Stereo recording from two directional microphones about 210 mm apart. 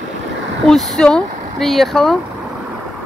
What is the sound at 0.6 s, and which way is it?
Speech, centre (ahead or behind).